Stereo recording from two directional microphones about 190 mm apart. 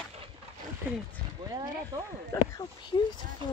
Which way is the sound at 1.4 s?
20° right (ahead or behind).